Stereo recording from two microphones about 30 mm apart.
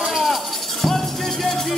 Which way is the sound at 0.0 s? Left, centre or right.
Centre.